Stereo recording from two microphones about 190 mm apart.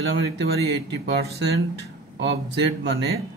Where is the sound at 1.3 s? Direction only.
60° right (ahead or behind).